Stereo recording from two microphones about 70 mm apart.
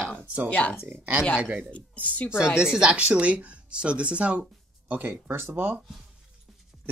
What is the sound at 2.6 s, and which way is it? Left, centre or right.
Speech, centre.